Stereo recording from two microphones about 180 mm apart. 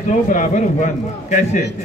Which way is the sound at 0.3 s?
45° left (ahead or behind).